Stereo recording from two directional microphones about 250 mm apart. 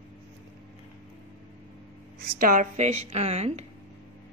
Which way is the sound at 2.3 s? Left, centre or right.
Right.